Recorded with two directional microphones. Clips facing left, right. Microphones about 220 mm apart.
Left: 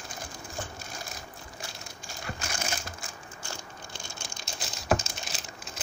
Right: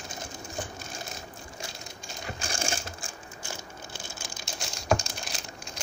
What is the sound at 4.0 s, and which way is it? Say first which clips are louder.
Crumpling: right 1 dB; 5° right (ahead or behind).